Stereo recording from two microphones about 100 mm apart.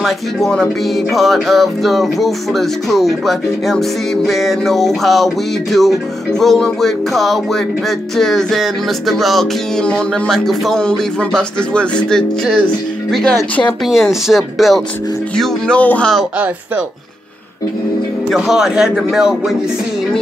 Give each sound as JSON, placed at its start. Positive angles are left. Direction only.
{"t": 0.0, "sound": "music", "side_deg": 5}
{"t": 15.3, "sound": "speech", "side_deg": 5}
{"t": 18.3, "sound": "music", "side_deg": -5}